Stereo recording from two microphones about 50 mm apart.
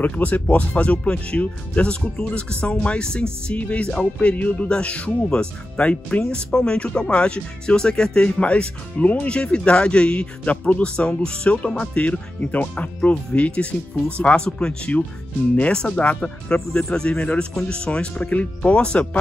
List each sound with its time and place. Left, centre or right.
0.0 s speech: left; by 17.2 s centre
17.2 s speech: left